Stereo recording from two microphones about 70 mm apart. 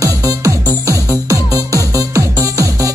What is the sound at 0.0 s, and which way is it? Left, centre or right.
Music, right.